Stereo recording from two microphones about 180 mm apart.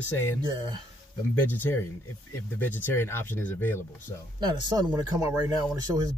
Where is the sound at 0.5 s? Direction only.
25° right (ahead or behind).